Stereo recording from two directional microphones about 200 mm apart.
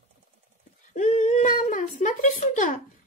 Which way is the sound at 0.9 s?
35° left (ahead or behind).